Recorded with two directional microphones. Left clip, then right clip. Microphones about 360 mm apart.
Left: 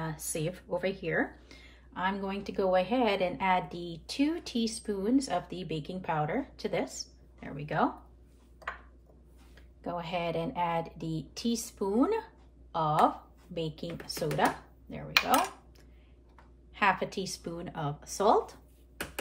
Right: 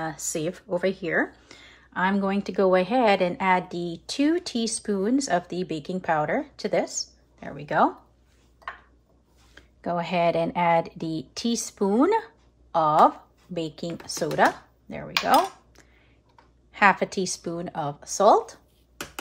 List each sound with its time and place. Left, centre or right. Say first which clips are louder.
0.0 s speech: right 7 dB; centre
9.6 s speech: right 9 dB; right
16.7 s speech: right 8 dB; centre